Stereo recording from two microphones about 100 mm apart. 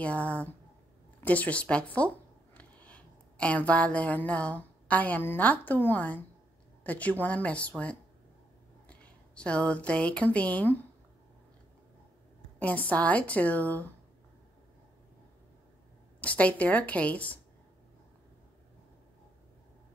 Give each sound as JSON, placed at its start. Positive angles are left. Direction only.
{"t": 0.0, "sound": "a woman's voice", "side_deg": 15}
{"t": 12.5, "sound": "a woman's voice", "side_deg": 15}
{"t": 16.2, "sound": "a woman's voice", "side_deg": 15}